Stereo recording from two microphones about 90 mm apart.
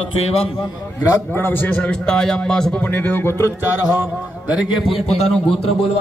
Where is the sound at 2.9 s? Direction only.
25° left (ahead or behind).